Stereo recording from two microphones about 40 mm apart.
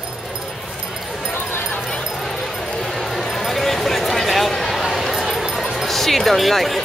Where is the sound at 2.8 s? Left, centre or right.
Centre.